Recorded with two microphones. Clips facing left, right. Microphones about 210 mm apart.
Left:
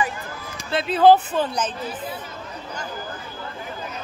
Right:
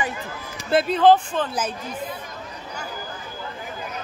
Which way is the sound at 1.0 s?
5° left (ahead or behind).